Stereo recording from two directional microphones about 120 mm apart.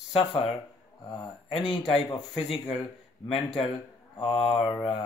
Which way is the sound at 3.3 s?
50° left (ahead or behind).